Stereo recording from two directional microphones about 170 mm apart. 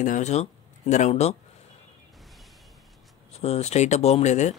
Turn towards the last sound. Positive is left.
turn(degrees=40)  # may be behind; listen again after turning